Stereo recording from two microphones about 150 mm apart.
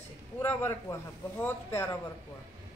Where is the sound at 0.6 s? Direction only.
15° left (ahead or behind).